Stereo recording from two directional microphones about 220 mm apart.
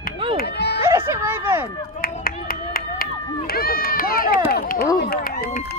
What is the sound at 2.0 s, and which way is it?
Run, 40° left (ahead or behind).